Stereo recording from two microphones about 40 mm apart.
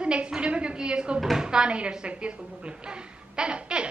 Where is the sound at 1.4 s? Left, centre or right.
Right.